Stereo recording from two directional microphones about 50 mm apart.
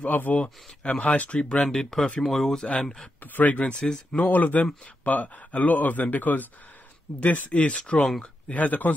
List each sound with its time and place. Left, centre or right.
0.0 s speech: left
0.8 s speech: left
3.2 s speech: left
3.8 s speech: centre
4.2 s speech: left; by 8.1 s centre
8.5 s speech: left